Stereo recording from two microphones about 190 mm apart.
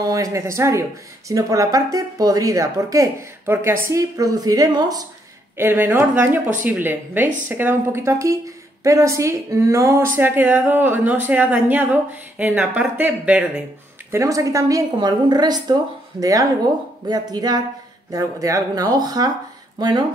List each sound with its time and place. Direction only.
0.0 s speech: 15° right (ahead or behind)
14.1 s speech: 15° right (ahead or behind)